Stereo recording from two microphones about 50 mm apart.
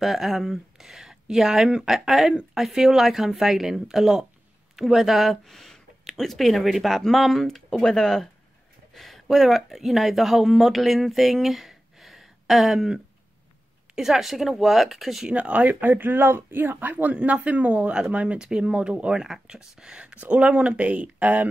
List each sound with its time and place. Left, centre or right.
0.0 s speech: centre
15.3 s speech: right
18.4 s speech: centre; by 21.5 s right